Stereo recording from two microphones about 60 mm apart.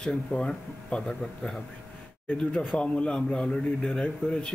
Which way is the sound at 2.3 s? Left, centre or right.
Left.